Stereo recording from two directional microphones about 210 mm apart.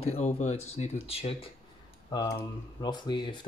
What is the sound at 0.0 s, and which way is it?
Speech, 30° left (ahead or behind).